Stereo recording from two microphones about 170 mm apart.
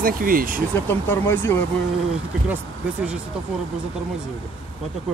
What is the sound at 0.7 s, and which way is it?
Speech, 15° left (ahead or behind).